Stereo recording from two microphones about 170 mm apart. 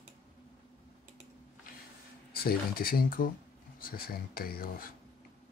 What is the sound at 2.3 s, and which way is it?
Speech, 60° left (ahead or behind).